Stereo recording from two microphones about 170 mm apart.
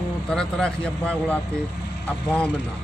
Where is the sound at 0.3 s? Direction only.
5° left (ahead or behind).